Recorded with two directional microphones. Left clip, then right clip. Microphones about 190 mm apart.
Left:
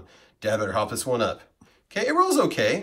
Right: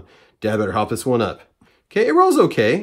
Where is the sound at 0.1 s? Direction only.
55° right (ahead or behind).